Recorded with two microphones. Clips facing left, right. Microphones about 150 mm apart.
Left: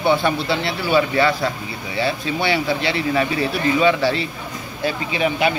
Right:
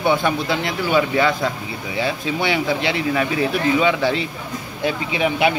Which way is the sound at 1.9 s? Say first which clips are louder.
Left 1 dB; 15° right (ahead or behind).